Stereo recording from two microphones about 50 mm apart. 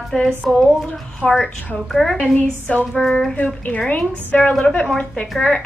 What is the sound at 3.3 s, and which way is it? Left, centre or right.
A woman's voice, left.